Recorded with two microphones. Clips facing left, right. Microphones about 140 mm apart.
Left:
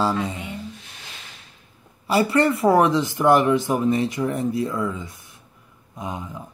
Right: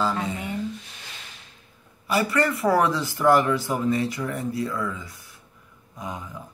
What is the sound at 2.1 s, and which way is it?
Speech, 30° left (ahead or behind).